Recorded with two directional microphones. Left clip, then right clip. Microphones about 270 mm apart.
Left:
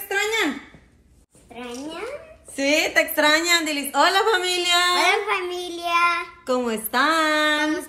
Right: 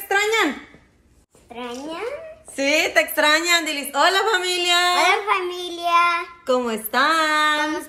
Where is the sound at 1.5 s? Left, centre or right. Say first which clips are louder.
Right 3 dB; right.